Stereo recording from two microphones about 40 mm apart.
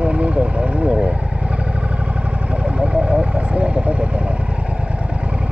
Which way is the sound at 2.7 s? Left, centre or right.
Right.